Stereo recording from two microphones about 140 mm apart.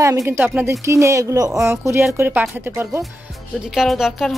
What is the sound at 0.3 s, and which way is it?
Speech, 15° right (ahead or behind).